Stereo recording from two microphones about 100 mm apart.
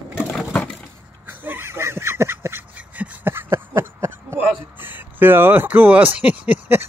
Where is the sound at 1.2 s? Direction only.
20° right (ahead or behind).